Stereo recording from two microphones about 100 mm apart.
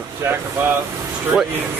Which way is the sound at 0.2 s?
25° right (ahead or behind).